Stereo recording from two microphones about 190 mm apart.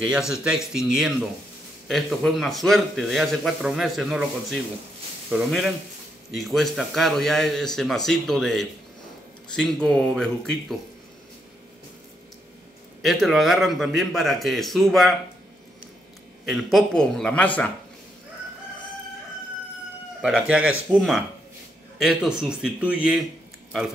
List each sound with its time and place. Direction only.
0.3 s a man's voice: 5° right (ahead or behind)
13.0 s a man's voice: centre (ahead or behind)
16.7 s a man's voice: centre (ahead or behind)
20.2 s a man's voice: 5° right (ahead or behind)